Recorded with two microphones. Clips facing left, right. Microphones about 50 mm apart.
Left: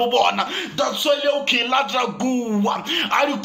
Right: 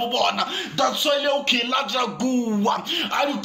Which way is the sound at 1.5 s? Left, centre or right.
Left.